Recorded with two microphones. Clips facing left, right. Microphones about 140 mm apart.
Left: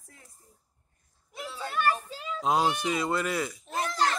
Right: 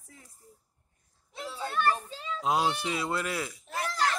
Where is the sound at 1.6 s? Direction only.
10° left (ahead or behind).